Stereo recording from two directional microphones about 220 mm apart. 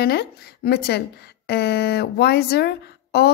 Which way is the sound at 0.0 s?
45° left (ahead or behind).